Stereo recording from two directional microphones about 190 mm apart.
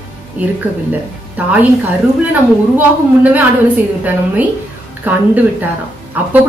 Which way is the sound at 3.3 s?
10° right (ahead or behind).